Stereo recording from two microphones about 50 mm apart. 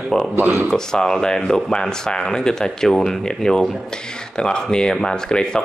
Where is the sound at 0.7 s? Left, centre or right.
Centre.